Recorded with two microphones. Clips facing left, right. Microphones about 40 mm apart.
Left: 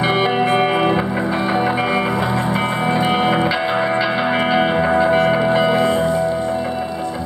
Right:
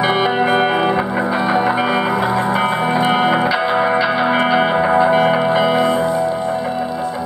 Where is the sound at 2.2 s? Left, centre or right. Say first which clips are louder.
Right 3 dB; right.